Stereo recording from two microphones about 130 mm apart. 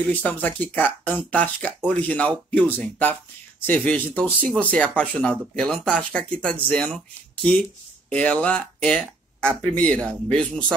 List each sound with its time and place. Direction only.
0.1 s speech: 15° left (ahead or behind)
8.1 s speech: 10° left (ahead or behind)